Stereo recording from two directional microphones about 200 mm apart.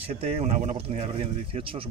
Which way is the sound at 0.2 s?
30° right (ahead or behind).